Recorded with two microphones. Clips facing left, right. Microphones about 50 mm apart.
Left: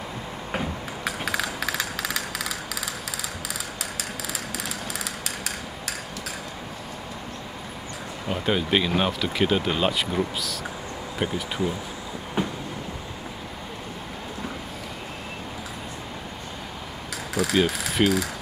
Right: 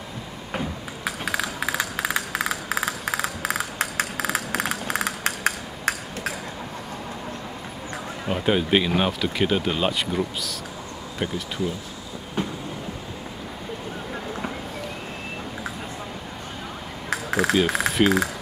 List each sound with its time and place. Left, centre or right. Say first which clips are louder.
1.0 s a sound: right 1 dB; centre
1.7 s a sound: right 3 dB; right
8.3 s speech: right 3 dB; centre
12.4 s train: left 1 dB; centre
17.1 s keys jangling: right 4 dB; right
18.0 s speech: right 1 dB; right